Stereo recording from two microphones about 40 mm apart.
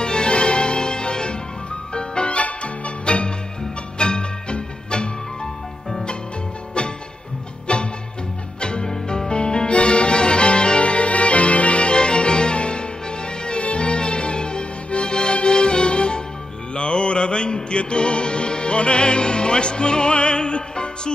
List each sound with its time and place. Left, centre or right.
0.0 s music: left
7.6 s music: left